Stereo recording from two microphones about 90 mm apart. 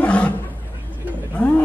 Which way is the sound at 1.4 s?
10° left (ahead or behind).